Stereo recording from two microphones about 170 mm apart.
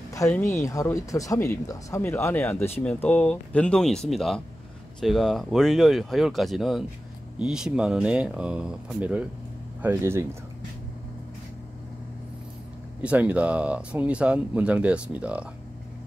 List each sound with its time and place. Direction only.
0.1 s speech: 15° left (ahead or behind); by 10.2 s 15° right (ahead or behind)
13.0 s speech: 10° right (ahead or behind)